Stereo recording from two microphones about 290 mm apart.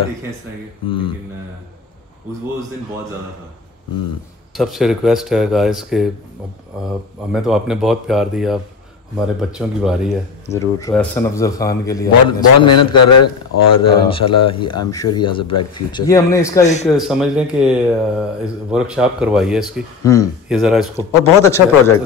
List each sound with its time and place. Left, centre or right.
0.8 s a man's voice: centre
4.6 s speech: centre
10.5 s a man's voice: centre
12.9 s speech: left
13.7 s a man's voice: centre
16.6 s speech: left
16.9 s speech: centre
20.0 s speech: centre
20.4 s speech: centre
21.0 s a man's voice: centre